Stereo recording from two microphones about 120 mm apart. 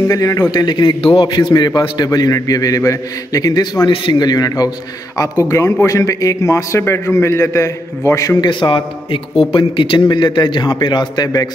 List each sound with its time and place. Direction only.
0.1 s a man's voice: 30° left (ahead or behind)
3.9 s a man's voice: 45° left (ahead or behind); by 8.5 s 25° left (ahead or behind)
8.5 s a man's voice: 40° left (ahead or behind)